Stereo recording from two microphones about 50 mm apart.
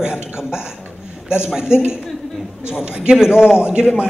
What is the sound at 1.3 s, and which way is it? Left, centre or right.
A man's voice, centre.